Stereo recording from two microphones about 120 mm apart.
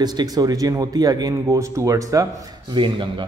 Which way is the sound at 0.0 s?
35° right (ahead or behind).